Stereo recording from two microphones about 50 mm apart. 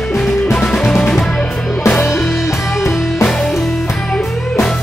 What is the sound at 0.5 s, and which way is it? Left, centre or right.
Music, centre.